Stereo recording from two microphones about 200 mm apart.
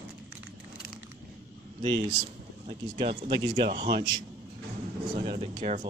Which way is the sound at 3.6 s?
25° right (ahead or behind).